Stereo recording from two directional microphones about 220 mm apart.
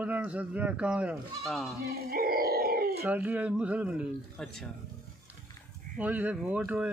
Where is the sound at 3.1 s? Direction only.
5° right (ahead or behind).